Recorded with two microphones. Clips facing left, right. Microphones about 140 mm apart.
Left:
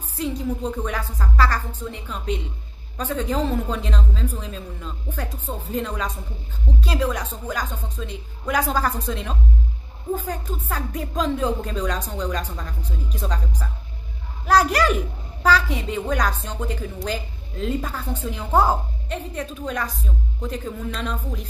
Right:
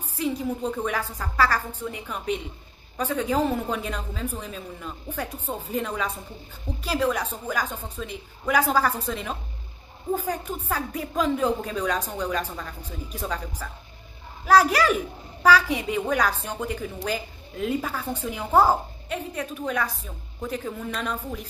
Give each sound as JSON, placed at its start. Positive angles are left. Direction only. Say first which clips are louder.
{"t": 0.2, "sound": "a woman's voice", "louder": "left 1 dB", "side_deg": -5}
{"t": 14.5, "sound": "a woman's voice", "louder": "even", "side_deg": -5}